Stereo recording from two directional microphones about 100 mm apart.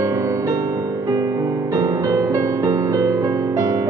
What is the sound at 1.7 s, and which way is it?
Music, 35° right (ahead or behind).